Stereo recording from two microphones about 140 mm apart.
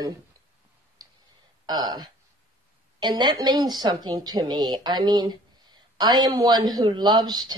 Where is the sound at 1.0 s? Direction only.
25° right (ahead or behind).